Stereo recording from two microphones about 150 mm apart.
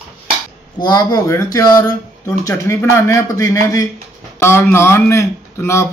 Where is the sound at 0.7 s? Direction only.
25° left (ahead or behind).